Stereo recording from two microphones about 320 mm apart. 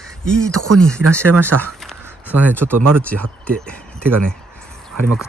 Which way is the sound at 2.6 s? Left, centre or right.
Right.